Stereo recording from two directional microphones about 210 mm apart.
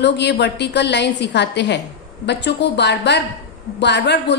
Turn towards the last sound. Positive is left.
turn(degrees=55)  # may be behind; listen again after turning